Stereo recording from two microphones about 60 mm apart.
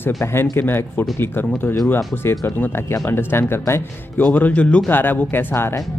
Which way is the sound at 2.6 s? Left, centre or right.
Left.